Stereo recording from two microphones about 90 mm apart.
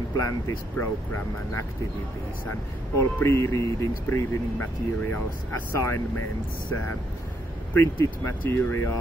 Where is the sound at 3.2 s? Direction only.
30° left (ahead or behind).